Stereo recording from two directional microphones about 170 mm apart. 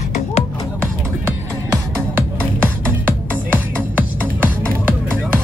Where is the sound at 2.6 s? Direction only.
10° left (ahead or behind).